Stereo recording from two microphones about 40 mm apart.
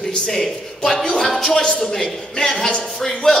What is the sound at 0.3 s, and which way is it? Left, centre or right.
A man's voice, centre.